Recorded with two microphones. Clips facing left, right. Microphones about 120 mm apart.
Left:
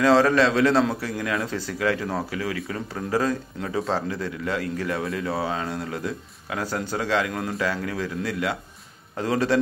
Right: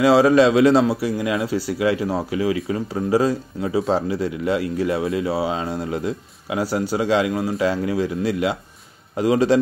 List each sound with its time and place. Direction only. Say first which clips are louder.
0.0 s a man's voice: right 4 dB; 15° right (ahead or behind)